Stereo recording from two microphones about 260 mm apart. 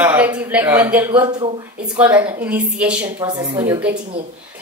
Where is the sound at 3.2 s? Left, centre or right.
Centre.